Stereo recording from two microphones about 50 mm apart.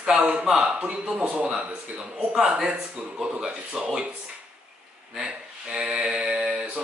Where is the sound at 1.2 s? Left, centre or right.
Right.